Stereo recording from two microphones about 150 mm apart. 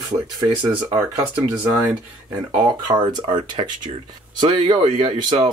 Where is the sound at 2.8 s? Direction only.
30° right (ahead or behind).